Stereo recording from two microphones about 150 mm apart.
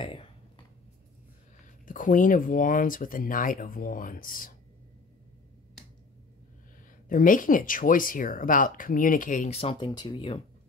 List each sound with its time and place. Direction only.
1.9 s speech: 60° left (ahead or behind)
7.1 s speech: 65° left (ahead or behind); by 10.4 s 35° left (ahead or behind)